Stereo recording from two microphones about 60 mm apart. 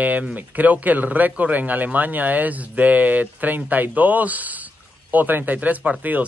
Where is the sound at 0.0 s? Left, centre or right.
Right.